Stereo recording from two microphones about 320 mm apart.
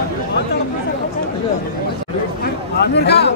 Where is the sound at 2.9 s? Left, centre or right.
Left.